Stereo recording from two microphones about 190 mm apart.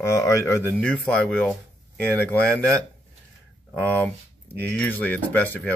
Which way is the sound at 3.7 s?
5° left (ahead or behind).